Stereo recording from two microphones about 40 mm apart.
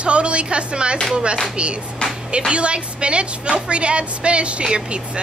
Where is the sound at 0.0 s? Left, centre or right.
Right.